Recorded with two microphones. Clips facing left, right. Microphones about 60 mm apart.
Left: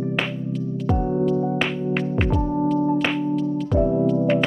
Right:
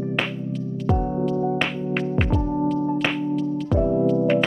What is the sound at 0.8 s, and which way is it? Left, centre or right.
Music, centre.